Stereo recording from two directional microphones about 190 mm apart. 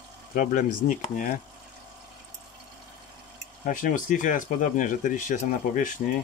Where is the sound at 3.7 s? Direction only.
45° left (ahead or behind).